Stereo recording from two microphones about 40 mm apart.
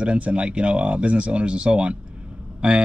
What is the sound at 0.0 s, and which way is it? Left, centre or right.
Speech, right.